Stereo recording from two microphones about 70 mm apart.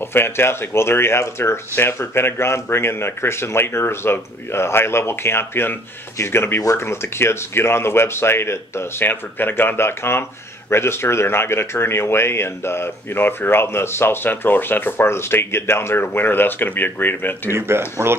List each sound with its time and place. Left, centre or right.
0.0 s speech: left
17.5 s speech: right